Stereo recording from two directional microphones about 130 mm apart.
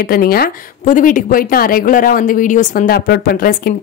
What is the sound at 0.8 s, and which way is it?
A woman's voice, 90° left.